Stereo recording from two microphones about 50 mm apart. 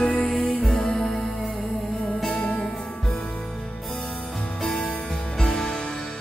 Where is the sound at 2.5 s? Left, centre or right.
Centre.